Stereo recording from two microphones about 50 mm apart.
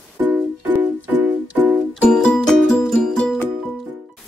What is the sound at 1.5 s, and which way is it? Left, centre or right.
Music, right.